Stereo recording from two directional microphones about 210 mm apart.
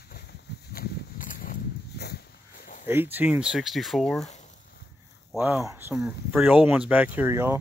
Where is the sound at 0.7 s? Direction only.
40° left (ahead or behind).